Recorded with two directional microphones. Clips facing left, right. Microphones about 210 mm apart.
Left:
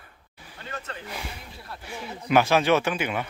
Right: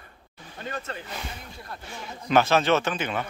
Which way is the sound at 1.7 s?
10° left (ahead or behind).